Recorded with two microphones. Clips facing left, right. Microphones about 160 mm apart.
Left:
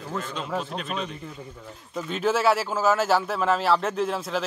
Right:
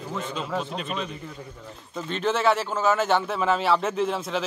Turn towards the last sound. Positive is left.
turn(degrees=0)  # may be behind; listen again after turning